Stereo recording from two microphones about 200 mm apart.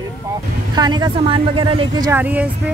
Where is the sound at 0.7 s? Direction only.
20° right (ahead or behind).